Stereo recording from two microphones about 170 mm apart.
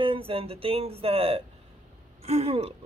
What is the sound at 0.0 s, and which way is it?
Speech, 30° right (ahead or behind).